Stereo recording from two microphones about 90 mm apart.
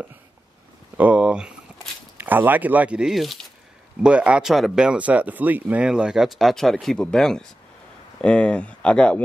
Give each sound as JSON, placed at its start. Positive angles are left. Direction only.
{"t": 0.9, "sound": "speech", "side_deg": -15}
{"t": 4.0, "sound": "speech", "side_deg": -15}